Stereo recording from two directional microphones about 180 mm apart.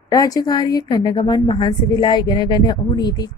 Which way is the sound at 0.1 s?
20° left (ahead or behind).